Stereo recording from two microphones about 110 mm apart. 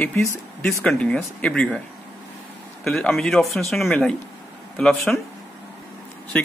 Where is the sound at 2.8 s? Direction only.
5° left (ahead or behind).